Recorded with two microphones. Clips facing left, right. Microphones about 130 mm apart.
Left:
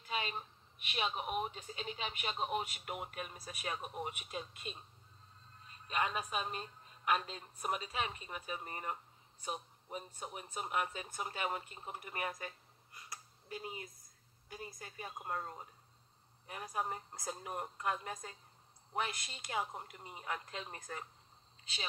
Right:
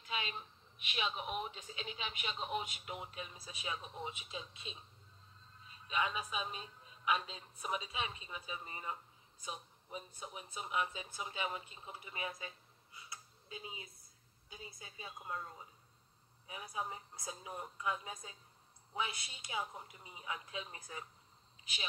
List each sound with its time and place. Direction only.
0.1 s a sound: 45° left (ahead or behind)
0.8 s speech: 45° left (ahead or behind); by 12.5 s 60° left (ahead or behind)
13.0 s a sound: 55° left (ahead or behind)
14.8 s speech: 60° left (ahead or behind)
16.7 s speech: 65° left (ahead or behind)
19.3 s speech: 65° left (ahead or behind)